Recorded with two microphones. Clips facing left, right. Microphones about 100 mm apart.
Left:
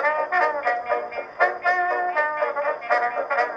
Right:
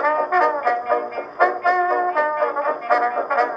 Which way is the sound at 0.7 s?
40° right (ahead or behind).